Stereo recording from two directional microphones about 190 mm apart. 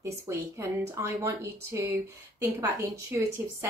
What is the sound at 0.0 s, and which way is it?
Speech, 15° right (ahead or behind).